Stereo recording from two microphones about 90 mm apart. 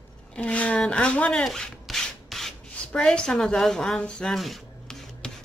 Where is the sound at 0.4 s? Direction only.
15° left (ahead or behind).